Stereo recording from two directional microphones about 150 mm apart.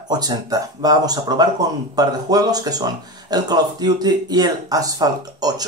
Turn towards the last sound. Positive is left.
turn(degrees=-25)  # may be behind; listen again after turning